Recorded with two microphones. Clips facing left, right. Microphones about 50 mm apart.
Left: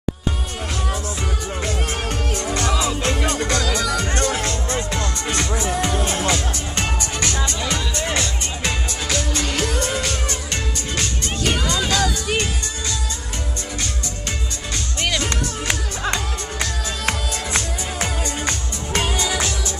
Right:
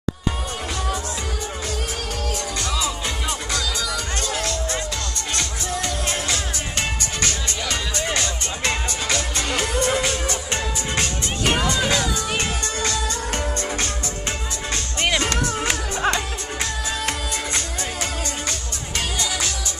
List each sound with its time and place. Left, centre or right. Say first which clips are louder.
3.1 s music: left 6 dB; left
5.3 s music: left 4 dB; centre
8.2 s music: even; centre
18.9 s music: left 4 dB; centre